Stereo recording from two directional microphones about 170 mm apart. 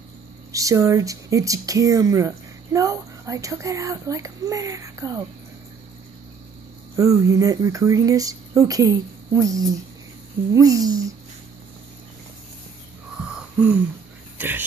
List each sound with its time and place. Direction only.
0.5 s speech: 20° right (ahead or behind)
7.0 s speech: 20° right (ahead or behind)
13.2 s wheeze: 5° right (ahead or behind)
14.4 s speech: 10° right (ahead or behind)